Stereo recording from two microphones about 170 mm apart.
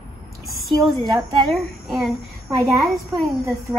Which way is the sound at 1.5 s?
Centre (ahead or behind).